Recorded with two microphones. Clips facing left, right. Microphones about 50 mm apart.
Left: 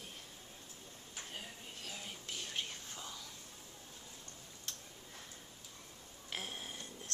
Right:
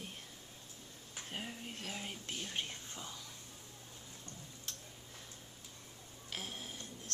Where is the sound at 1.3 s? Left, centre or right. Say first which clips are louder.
Right 7 dB; right.